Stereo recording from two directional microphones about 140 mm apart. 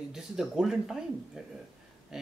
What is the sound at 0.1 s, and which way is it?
Speech, centre (ahead or behind).